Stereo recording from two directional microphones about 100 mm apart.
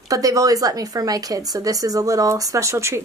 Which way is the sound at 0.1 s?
35° right (ahead or behind).